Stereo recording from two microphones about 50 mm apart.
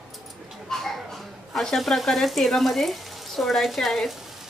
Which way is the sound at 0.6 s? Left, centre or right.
Centre.